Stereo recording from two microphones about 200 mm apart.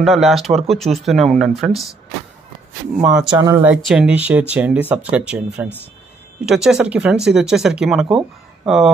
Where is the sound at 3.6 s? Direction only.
5° right (ahead or behind).